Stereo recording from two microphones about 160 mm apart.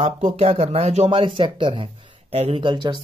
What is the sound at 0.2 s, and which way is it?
Speech, 45° right (ahead or behind).